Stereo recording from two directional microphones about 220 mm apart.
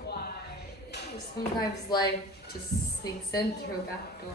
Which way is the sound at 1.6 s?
20° left (ahead or behind).